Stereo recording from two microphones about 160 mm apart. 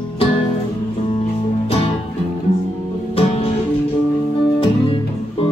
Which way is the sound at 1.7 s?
35° left (ahead or behind).